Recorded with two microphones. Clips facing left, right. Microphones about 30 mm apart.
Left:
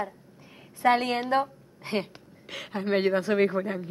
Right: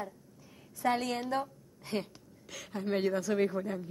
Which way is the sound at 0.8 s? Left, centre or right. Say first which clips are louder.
Left 8 dB; left.